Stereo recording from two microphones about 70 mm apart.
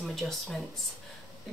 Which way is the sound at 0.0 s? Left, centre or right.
Centre.